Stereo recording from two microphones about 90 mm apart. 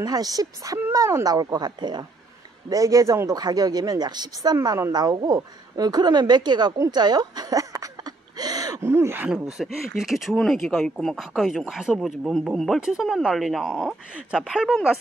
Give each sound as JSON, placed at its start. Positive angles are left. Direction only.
{"t": 0.0, "sound": "speech", "side_deg": -45}
{"t": 2.7, "sound": "speech", "side_deg": -40}
{"t": 6.9, "sound": "a sound", "side_deg": -50}
{"t": 8.8, "sound": "speech", "side_deg": -25}
{"t": 9.3, "sound": "speech", "side_deg": -5}